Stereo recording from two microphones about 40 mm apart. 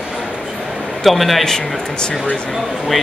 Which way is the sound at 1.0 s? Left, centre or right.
Centre.